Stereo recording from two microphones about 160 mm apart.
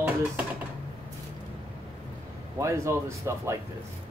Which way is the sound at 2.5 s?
20° right (ahead or behind).